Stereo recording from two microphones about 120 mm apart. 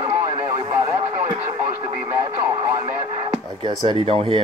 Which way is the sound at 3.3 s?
40° right (ahead or behind).